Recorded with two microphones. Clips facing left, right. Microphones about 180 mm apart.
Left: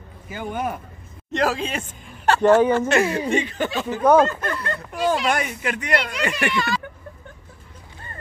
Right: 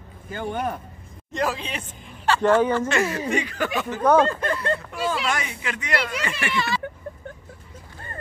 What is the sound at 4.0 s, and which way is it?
Speech, 10° left (ahead or behind).